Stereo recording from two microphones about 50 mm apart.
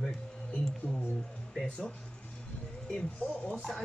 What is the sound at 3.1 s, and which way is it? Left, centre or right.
Speech, left.